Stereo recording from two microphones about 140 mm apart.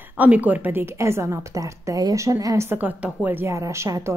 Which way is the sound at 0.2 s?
10° right (ahead or behind).